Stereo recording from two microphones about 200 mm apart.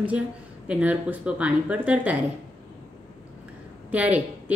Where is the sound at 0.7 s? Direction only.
5° right (ahead or behind).